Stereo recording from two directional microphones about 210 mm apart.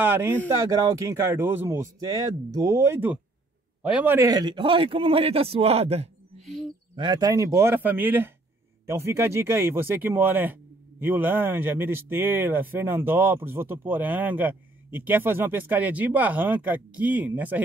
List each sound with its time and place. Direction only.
0.0 s a man's voice: 10° right (ahead or behind); by 6.0 s 30° right (ahead or behind)
7.0 s speech: 20° right (ahead or behind)